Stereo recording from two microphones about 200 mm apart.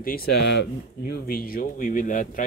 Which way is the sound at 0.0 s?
50° left (ahead or behind).